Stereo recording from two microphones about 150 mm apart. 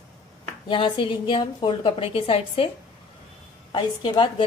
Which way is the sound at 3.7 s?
30° left (ahead or behind).